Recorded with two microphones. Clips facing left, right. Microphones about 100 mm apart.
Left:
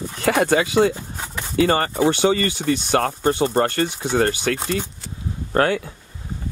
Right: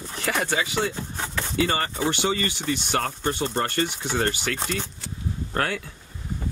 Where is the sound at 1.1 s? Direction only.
10° left (ahead or behind).